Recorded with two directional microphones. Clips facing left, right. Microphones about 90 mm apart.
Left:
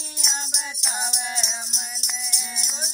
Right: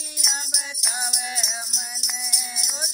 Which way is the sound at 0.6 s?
35° left (ahead or behind).